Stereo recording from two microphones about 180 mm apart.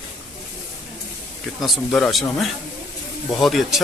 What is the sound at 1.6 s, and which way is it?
Speech, centre (ahead or behind).